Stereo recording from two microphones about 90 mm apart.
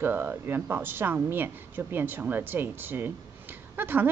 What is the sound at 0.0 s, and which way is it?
Speech, 25° right (ahead or behind).